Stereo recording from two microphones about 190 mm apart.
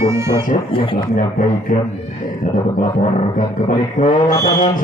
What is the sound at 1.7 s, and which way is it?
Speech, 45° left (ahead or behind).